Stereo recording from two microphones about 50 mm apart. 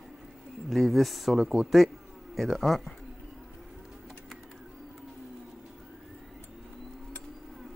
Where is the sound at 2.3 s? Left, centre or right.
Centre.